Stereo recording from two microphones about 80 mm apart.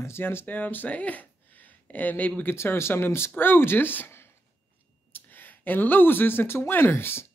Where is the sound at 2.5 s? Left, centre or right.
Left.